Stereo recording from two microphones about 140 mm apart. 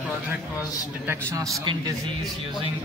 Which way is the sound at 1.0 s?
20° right (ahead or behind).